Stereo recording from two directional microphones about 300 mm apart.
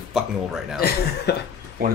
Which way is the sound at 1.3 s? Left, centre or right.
Left.